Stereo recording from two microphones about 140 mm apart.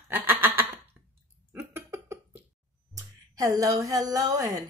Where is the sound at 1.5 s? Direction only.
15° right (ahead or behind).